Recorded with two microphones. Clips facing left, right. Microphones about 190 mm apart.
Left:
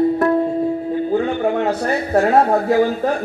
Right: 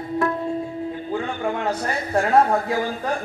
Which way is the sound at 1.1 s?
45° left (ahead or behind).